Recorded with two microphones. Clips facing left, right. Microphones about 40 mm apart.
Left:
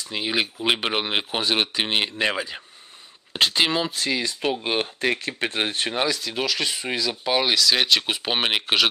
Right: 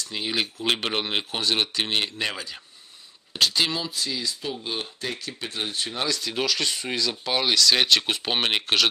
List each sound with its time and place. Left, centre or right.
0.0 s speech: centre
3.9 s speech: left
6.1 s speech: centre